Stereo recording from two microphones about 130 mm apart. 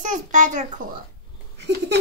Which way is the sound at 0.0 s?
75° right (ahead or behind).